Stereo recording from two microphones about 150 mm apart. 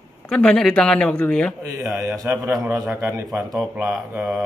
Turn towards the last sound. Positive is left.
turn(degrees=-5)  # may be behind; listen again after turning